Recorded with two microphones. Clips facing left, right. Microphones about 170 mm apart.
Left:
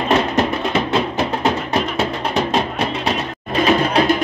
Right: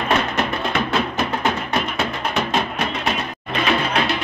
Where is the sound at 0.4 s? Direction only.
30° left (ahead or behind).